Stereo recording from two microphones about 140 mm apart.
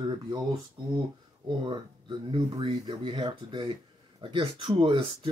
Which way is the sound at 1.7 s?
35° right (ahead or behind).